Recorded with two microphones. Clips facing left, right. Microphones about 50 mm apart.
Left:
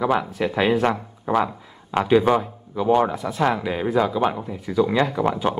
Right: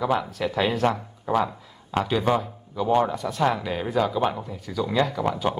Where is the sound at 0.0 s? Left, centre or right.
Centre.